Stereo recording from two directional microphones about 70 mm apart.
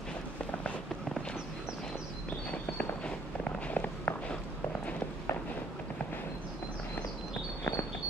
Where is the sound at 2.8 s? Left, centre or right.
Centre.